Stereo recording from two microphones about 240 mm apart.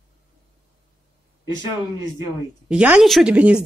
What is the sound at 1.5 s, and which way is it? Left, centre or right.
Speech, centre.